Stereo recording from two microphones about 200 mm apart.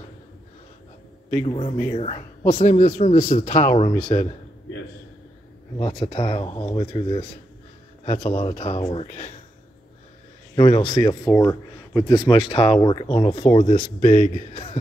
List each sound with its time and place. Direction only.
1.3 s speech: 25° left (ahead or behind)
5.8 s speech: 25° left (ahead or behind)
10.5 s speech: 25° left (ahead or behind)